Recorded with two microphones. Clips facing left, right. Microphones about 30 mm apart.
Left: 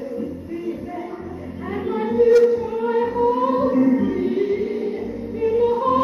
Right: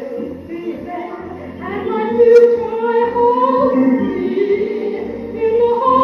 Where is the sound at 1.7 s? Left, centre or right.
Right.